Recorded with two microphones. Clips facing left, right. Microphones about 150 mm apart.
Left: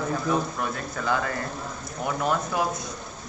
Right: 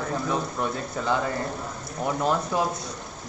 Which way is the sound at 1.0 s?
25° right (ahead or behind).